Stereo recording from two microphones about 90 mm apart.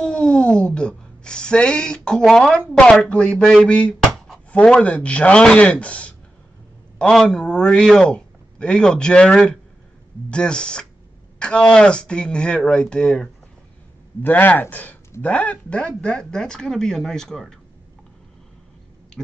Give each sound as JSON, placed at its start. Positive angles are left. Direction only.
{"t": 0.0, "sound": "cat", "side_deg": 5}
{"t": 2.7, "sound": "a man's voice", "side_deg": 10}
{"t": 14.2, "sound": "a man's voice", "side_deg": 20}
{"t": 19.2, "sound": "a sound", "side_deg": 5}